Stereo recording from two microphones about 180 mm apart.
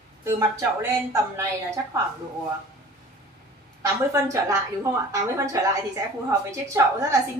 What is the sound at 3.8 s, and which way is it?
A woman's voice, 15° right (ahead or behind).